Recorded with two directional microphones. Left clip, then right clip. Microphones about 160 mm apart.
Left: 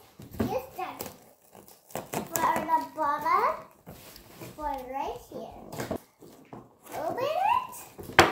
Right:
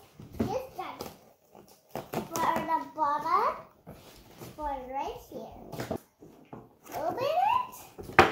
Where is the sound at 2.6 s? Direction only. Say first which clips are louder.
Left 2 dB; 10° left (ahead or behind).